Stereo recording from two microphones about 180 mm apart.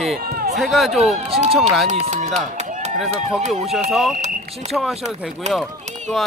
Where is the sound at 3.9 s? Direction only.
Centre (ahead or behind).